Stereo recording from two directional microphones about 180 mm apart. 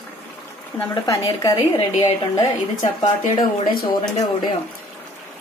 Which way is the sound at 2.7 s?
45° left (ahead or behind).